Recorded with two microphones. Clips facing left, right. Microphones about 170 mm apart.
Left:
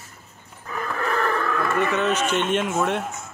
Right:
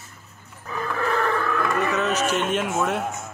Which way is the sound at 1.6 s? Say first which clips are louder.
Left 3 dB; centre (ahead or behind).